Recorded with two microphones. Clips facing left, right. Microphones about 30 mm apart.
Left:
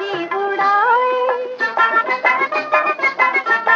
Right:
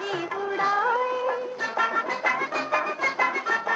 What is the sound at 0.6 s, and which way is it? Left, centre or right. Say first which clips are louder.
Music of bollywood: left 9 dB; left.